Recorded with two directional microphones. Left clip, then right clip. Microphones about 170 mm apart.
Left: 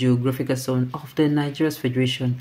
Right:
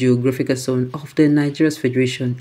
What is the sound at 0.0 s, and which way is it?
Speech, 15° right (ahead or behind).